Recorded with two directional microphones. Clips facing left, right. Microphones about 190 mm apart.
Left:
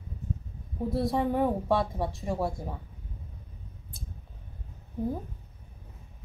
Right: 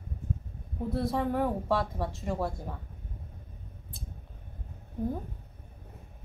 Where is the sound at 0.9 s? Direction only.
15° left (ahead or behind).